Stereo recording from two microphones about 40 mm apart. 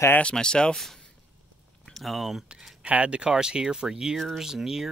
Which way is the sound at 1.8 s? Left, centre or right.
Centre.